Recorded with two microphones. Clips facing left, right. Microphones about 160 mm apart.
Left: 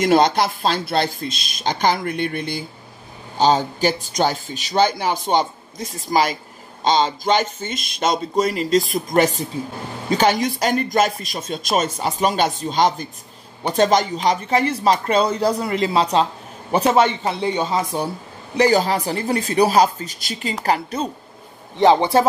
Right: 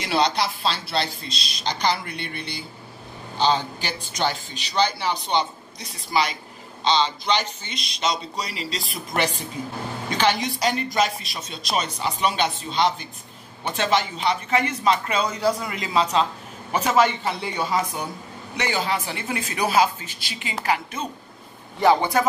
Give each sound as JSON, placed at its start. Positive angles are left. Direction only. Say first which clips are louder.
{"t": 0.0, "sound": "speech", "louder": "left 7 dB", "side_deg": 45}
{"t": 21.8, "sound": "speech", "louder": "left 4 dB", "side_deg": 25}